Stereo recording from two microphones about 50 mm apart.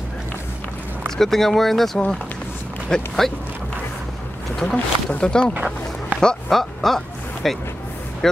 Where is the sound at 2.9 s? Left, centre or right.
Centre.